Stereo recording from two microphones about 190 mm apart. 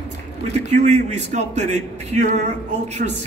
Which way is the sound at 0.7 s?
35° right (ahead or behind).